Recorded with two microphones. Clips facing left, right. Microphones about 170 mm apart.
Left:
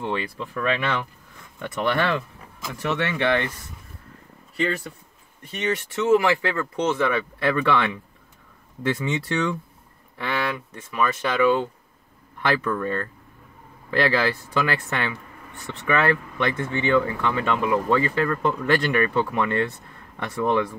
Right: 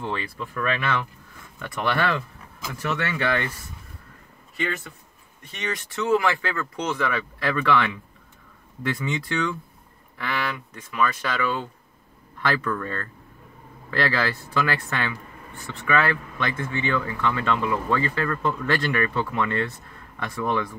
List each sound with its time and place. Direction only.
0.0 s speech: 15° left (ahead or behind)
5.6 s speech: 30° left (ahead or behind)